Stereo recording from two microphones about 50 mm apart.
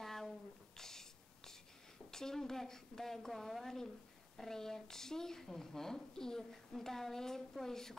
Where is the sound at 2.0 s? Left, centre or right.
Centre.